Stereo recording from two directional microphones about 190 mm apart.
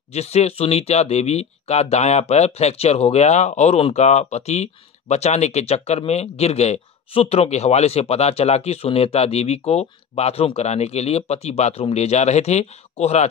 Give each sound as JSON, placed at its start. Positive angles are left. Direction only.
{"t": 0.1, "sound": "speech", "side_deg": 35}